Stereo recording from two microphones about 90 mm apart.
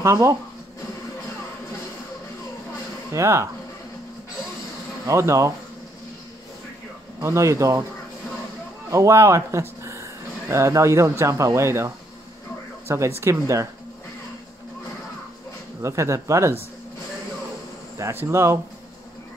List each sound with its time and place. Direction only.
0.0 s speech: 35° right (ahead or behind)
3.1 s speech: 30° right (ahead or behind)
5.0 s speech: 35° right (ahead or behind)
7.2 s speech: 35° right (ahead or behind)
8.9 s speech: 35° right (ahead or behind)
15.8 s speech: 35° right (ahead or behind)
18.1 s speech: 30° right (ahead or behind)